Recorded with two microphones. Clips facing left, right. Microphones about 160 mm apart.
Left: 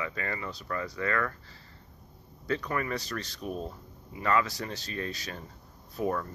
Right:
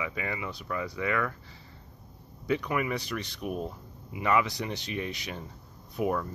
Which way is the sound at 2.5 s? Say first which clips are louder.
Right 2 dB; 10° right (ahead or behind).